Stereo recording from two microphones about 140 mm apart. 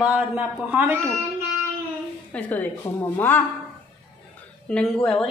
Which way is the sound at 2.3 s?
10° left (ahead or behind).